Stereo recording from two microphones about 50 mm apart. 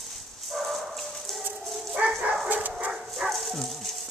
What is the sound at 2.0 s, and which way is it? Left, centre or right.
Dog, right.